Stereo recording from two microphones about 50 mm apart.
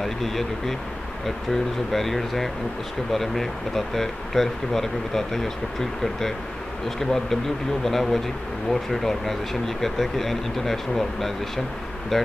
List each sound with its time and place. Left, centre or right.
0.0 s speech: centre